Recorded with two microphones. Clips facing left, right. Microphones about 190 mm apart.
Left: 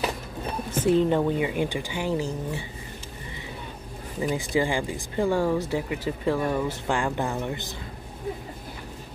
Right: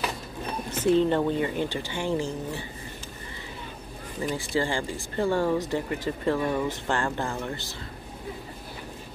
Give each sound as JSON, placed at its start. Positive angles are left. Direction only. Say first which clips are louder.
{"t": 0.8, "sound": "speech", "louder": "even", "side_deg": 10}
{"t": 4.2, "sound": "speech", "louder": "left 3 dB", "side_deg": 15}